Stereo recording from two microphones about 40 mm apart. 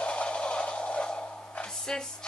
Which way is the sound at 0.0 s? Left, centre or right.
Left.